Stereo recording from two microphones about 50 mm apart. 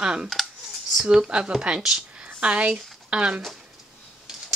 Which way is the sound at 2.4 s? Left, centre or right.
Right.